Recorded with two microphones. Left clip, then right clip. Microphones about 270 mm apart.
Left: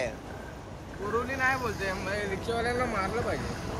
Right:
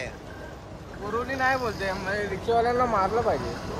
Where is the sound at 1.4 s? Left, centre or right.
Right.